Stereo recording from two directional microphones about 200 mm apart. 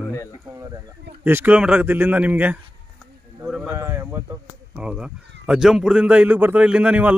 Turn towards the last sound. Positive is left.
turn(degrees=-5)  # may be behind; listen again after turning